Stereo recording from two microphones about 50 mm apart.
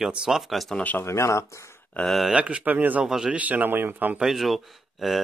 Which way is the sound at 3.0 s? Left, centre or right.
Centre.